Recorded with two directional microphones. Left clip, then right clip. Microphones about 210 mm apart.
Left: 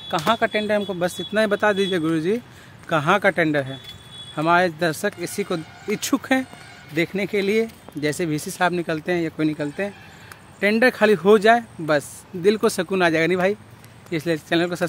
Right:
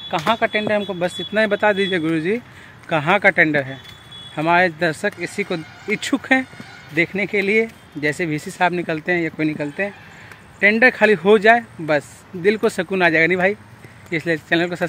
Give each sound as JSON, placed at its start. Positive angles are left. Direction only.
{"t": 0.2, "sound": "speech", "side_deg": 5}